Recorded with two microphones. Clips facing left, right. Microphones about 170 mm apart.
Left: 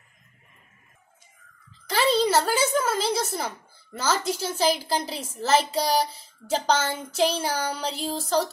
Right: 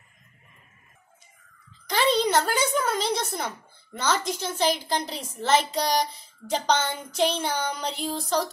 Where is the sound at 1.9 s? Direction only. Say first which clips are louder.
Left 1 dB; 5° left (ahead or behind).